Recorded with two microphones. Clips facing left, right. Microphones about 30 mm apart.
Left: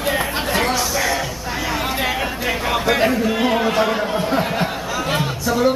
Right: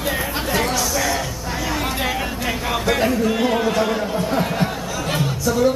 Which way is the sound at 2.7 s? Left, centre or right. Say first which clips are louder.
Left 2 dB; centre.